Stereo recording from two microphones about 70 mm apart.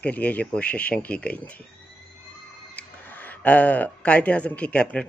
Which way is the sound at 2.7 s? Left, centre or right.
Left.